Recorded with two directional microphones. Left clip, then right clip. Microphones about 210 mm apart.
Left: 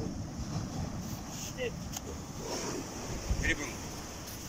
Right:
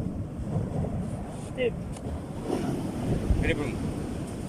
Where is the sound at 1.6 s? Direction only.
45° right (ahead or behind).